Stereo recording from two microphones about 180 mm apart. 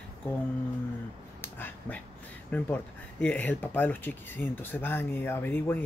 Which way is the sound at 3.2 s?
10° left (ahead or behind).